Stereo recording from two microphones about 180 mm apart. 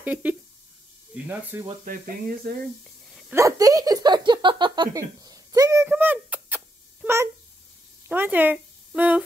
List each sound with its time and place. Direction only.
0.0 s speech: 10° right (ahead or behind)
1.9 s speech: 55° right (ahead or behind)
2.8 s a sound: centre (ahead or behind)
3.3 s speech: 20° right (ahead or behind)